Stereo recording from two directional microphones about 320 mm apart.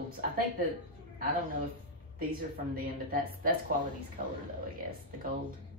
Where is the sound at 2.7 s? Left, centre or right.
Right.